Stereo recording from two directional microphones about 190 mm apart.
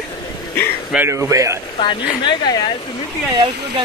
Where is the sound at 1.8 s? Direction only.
25° left (ahead or behind).